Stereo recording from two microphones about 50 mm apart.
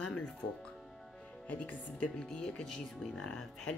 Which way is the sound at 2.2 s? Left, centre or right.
Centre.